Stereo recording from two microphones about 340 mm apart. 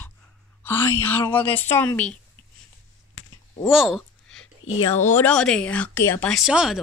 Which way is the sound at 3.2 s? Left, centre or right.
Left.